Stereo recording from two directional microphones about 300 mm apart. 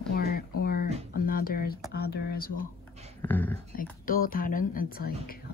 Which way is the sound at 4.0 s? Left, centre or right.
Left.